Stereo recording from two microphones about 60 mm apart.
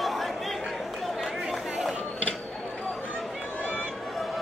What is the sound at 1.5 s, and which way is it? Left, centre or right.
Run, centre.